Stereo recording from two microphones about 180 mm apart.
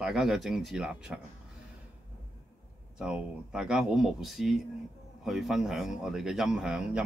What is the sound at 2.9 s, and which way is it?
Speech, 5° right (ahead or behind).